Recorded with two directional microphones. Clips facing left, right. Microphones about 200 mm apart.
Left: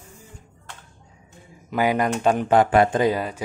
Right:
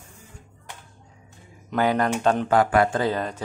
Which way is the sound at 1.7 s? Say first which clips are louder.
Left 1 dB; 10° left (ahead or behind).